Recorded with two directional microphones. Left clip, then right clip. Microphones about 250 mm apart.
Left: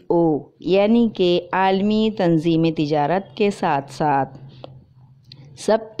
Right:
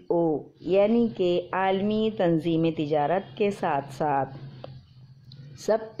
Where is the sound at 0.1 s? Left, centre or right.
Left.